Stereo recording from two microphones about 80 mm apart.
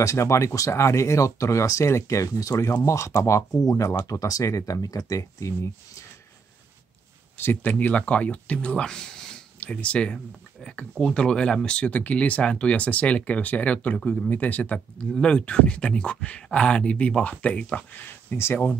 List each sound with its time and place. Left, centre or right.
0.0 s speech: left
7.3 s speech: left
17.9 s speech: left